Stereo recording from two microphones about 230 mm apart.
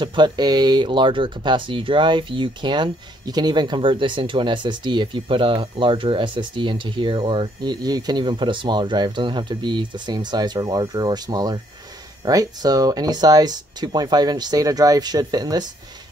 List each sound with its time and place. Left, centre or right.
0.0 s speech: centre